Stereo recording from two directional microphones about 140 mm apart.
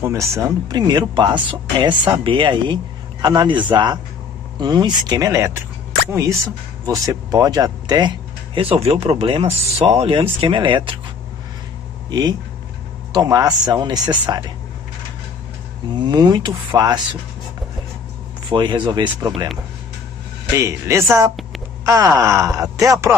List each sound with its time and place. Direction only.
0.0 s speech: 20° right (ahead or behind); by 11.0 s 35° right (ahead or behind)
12.1 s speech: 30° right (ahead or behind)
15.9 s speech: 30° right (ahead or behind)
18.5 s speech: 35° right (ahead or behind)
20.5 s speech: 20° right (ahead or behind)